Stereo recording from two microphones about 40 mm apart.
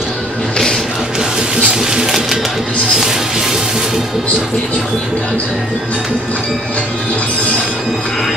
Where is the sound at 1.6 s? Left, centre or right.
Centre.